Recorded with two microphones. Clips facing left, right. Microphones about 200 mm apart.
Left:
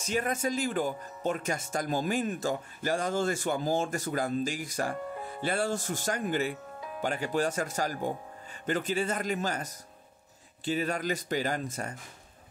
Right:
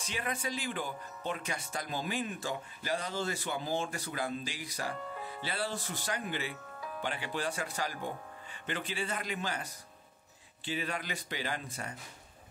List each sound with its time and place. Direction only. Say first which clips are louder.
0.0 s speech: left 8 dB; 45° left (ahead or behind)